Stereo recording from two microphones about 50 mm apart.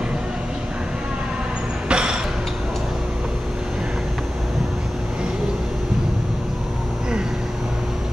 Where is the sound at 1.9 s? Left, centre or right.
Centre.